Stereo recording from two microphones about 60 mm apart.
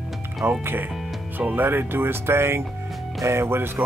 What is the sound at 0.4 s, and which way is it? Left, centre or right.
Speech, right.